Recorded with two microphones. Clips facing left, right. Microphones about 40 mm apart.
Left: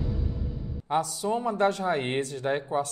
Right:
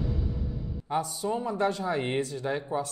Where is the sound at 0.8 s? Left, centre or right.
Left.